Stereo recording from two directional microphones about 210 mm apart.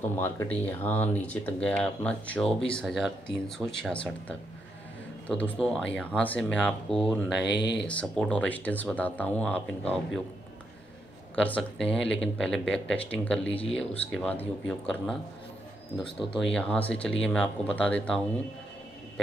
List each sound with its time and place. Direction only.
0.2 s speech: 10° left (ahead or behind)
7.4 s speech: 55° left (ahead or behind)
8.0 s speech: 5° left (ahead or behind)
11.3 s speech: 5° left (ahead or behind)
13.5 s speech: 25° left (ahead or behind)
13.7 s speech: 5° left (ahead or behind)
16.3 s speech: 5° left (ahead or behind)